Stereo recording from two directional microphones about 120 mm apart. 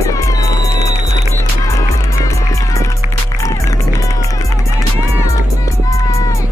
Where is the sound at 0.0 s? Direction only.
30° left (ahead or behind).